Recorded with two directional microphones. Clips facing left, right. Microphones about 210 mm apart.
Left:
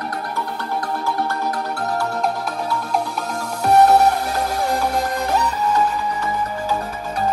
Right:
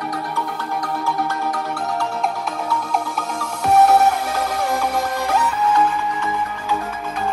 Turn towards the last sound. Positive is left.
turn(degrees=40)  # may be behind; listen again after turning